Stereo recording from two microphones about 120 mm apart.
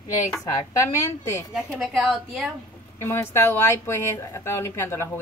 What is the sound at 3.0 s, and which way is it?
A woman's voice, 20° left (ahead or behind).